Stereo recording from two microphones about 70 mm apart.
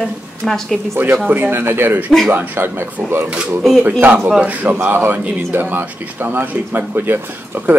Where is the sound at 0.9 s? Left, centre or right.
Right.